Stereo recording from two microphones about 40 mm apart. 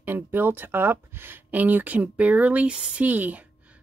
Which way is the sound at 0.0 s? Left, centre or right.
Right.